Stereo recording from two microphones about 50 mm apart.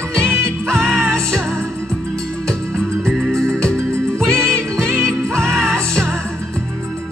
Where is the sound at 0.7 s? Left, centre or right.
Centre.